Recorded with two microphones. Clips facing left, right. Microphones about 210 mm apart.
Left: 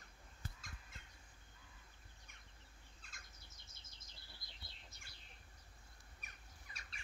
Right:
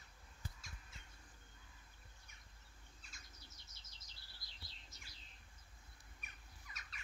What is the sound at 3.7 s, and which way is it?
Chirp, 55° left (ahead or behind).